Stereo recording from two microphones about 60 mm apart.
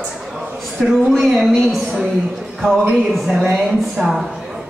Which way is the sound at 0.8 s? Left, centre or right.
Centre.